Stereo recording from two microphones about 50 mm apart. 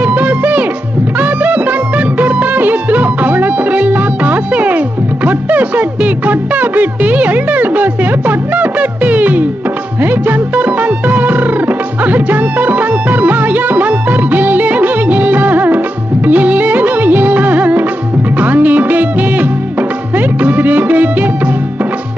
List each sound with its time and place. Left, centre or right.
0.0 s music: right
16.3 s music of bollywood: right
18.4 s music: right